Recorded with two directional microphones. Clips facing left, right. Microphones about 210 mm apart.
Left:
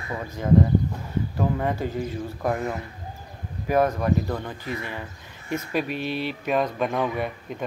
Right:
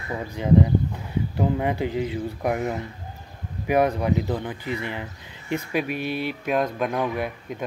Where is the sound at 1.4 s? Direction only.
15° right (ahead or behind).